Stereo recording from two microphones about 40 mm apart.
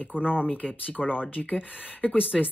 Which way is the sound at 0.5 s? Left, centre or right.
Left.